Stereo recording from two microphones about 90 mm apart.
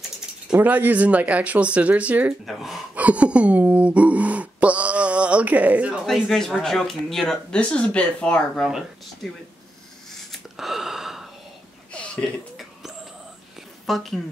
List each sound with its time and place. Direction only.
0.6 s speech: 20° right (ahead or behind)
2.4 s speech: centre (ahead or behind)
2.9 s a sound: 15° right (ahead or behind)
6.2 s speech: 5° left (ahead or behind)
8.6 s speech: 5° right (ahead or behind)
10.3 s gasp: 5° right (ahead or behind)
11.9 s a sound: 15° left (ahead or behind)
13.8 s speech: centre (ahead or behind)